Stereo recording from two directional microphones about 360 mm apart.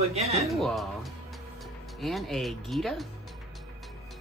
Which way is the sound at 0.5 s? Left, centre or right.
Centre.